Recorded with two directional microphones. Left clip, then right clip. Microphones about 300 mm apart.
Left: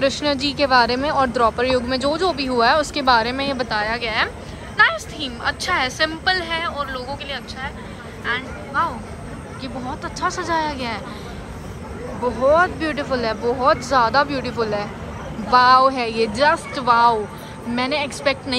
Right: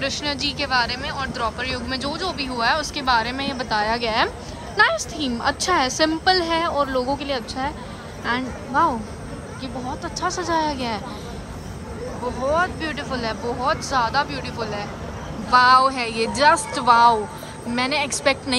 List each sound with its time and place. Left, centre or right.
0.0 s speech: centre
12.4 s speech: centre